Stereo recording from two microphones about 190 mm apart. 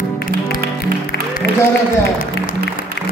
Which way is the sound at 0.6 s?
50° right (ahead or behind).